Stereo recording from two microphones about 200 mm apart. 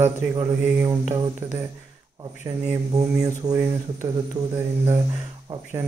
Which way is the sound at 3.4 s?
15° right (ahead or behind).